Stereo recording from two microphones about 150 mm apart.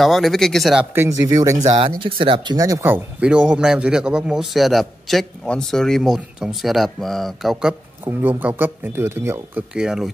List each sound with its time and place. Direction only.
0.0 s speech: centre (ahead or behind)
0.9 s speech: 20° right (ahead or behind)
2.0 s speech: 35° right (ahead or behind); by 7.7 s centre (ahead or behind)
8.0 s speech: 15° right (ahead or behind)